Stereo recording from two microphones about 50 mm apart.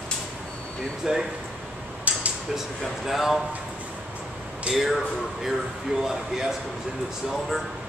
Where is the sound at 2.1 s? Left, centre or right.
Right.